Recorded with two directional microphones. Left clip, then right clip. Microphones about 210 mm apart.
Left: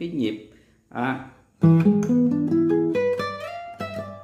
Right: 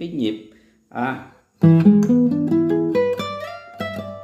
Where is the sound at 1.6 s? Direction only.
20° right (ahead or behind).